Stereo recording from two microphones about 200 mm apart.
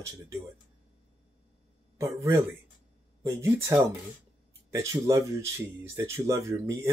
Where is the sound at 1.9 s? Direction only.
15° right (ahead or behind).